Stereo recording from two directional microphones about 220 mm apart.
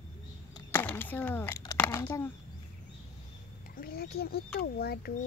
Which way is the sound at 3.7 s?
45° left (ahead or behind).